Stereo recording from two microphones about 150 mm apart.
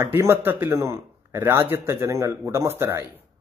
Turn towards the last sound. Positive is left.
turn(degrees=-15)  # may be behind; listen again after turning